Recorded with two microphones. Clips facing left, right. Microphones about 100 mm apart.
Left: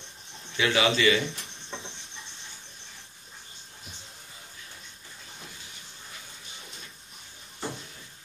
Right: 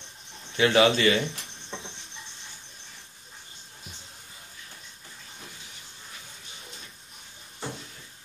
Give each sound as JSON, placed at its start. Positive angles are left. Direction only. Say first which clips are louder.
{"t": 0.6, "sound": "speech", "louder": "right 4 dB", "side_deg": -40}
{"t": 1.3, "sound": "cricket", "louder": "even", "side_deg": 0}